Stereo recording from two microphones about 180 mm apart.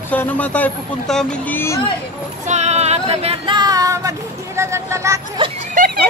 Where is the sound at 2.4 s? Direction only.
40° right (ahead or behind); by 4.1 s 20° right (ahead or behind).